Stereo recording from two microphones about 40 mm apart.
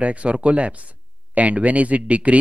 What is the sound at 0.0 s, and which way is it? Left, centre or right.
Speech, right.